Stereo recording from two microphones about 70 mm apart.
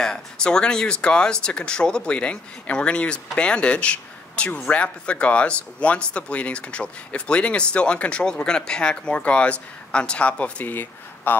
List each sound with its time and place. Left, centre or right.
0.0 s speech: centre; by 11.3 s left